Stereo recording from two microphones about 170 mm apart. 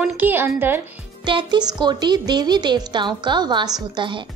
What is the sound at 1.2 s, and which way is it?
A woman's voice, 25° right (ahead or behind).